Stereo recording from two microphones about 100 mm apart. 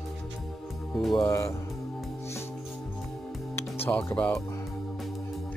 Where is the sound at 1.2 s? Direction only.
30° left (ahead or behind).